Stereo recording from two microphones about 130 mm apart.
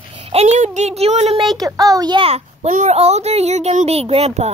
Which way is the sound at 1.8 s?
30° right (ahead or behind).